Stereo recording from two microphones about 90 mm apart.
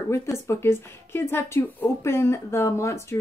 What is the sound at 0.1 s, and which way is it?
Speech, 30° left (ahead or behind).